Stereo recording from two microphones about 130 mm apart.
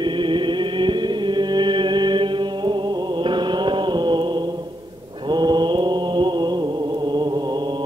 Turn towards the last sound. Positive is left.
turn(degrees=-35)  # may be behind; listen again after turning